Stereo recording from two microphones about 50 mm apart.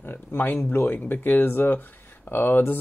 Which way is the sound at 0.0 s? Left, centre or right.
Left.